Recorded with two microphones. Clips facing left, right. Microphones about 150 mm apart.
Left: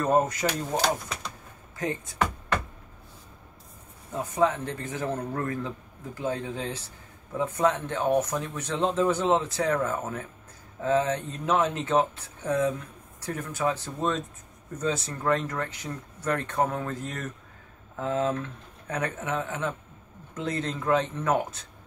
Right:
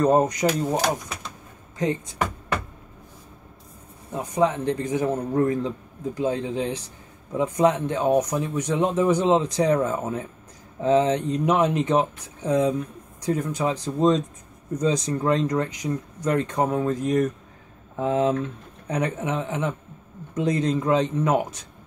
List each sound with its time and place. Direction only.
0.0 s speech: 20° right (ahead or behind)
4.1 s speech: 15° right (ahead or behind)